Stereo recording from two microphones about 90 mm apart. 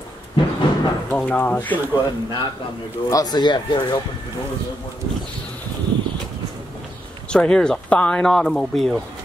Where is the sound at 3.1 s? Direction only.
45° left (ahead or behind).